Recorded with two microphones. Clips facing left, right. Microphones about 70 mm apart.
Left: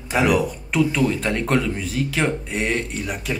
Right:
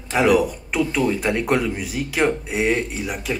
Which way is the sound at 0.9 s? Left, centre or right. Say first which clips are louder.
Even; centre.